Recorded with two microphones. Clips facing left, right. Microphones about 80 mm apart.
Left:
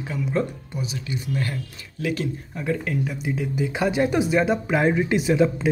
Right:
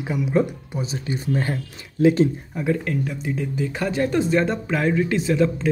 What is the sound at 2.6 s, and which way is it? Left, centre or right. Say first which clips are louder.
Speech: right 2 dB; centre.